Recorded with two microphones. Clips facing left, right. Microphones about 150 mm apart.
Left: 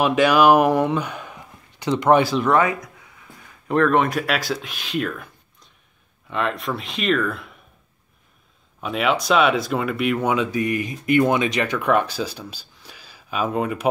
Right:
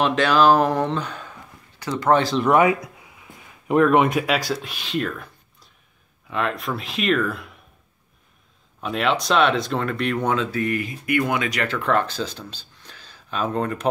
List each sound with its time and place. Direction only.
0.0 s speech: 10° left (ahead or behind)
2.4 s speech: 15° right (ahead or behind)
8.8 s speech: 5° left (ahead or behind)